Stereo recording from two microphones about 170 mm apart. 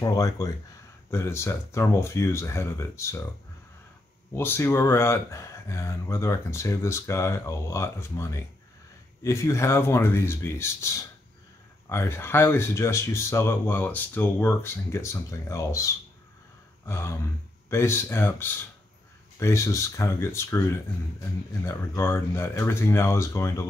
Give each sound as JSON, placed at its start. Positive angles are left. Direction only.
{"t": 0.0, "sound": "speech", "side_deg": 20}
{"t": 4.3, "sound": "speech", "side_deg": 15}